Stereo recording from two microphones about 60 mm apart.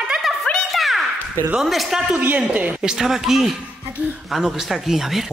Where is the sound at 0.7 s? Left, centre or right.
Centre.